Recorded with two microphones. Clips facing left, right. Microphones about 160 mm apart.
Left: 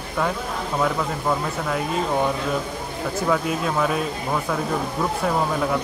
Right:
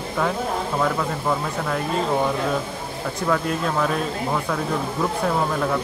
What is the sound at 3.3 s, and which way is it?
Speech, 5° left (ahead or behind).